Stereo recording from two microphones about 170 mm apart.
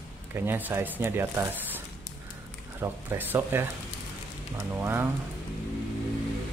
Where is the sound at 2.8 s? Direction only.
15° right (ahead or behind).